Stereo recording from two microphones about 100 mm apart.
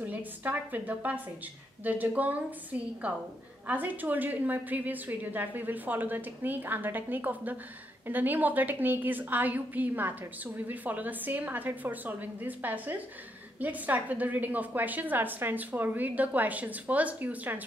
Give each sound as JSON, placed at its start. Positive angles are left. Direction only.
{"t": 0.0, "sound": "a woman's voice", "side_deg": -20}